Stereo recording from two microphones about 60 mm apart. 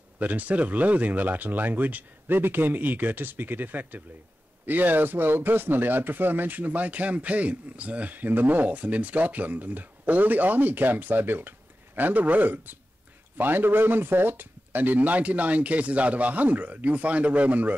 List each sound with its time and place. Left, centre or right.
0.2 s speech: right